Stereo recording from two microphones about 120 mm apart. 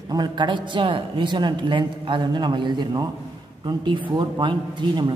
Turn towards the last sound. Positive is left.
turn(degrees=-40)  # may be behind; listen again after turning